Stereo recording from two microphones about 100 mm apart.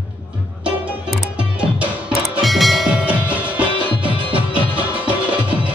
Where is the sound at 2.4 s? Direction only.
Centre (ahead or behind).